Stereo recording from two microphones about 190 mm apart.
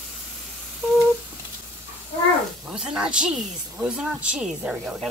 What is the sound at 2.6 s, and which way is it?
Speech, 5° right (ahead or behind).